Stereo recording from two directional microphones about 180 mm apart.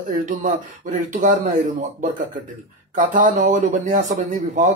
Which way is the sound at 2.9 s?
45° right (ahead or behind).